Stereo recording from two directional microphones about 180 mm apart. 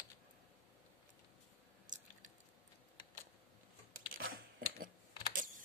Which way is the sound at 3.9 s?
55° right (ahead or behind).